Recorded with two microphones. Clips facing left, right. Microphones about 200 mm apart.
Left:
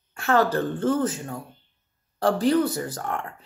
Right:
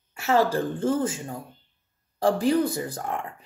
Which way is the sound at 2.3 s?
15° right (ahead or behind).